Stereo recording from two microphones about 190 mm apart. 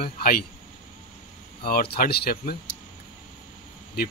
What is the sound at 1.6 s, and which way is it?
Speech, 55° left (ahead or behind).